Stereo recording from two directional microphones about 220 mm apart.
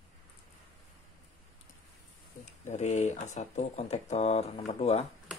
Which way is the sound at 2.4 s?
35° left (ahead or behind).